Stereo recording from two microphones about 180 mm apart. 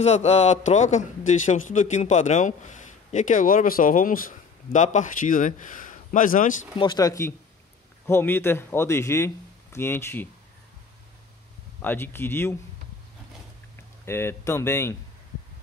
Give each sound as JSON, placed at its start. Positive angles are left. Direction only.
{"t": 0.0, "sound": "speech", "side_deg": 35}
{"t": 6.8, "sound": "speech", "side_deg": 20}
{"t": 11.8, "sound": "speech", "side_deg": 10}
{"t": 14.0, "sound": "speech", "side_deg": 15}